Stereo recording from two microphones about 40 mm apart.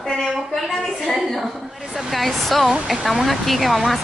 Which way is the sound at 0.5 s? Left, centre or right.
Centre.